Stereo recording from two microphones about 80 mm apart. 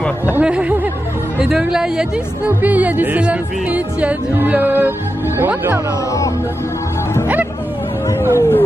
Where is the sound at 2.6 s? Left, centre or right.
Centre.